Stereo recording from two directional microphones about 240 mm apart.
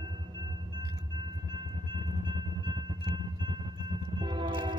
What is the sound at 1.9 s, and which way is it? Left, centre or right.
Train, centre.